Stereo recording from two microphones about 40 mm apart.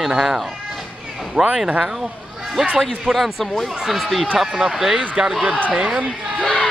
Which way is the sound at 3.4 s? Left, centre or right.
Centre.